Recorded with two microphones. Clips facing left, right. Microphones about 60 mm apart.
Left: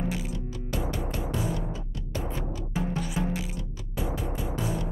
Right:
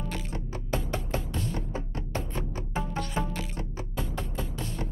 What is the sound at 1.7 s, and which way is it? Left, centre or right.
Music, right.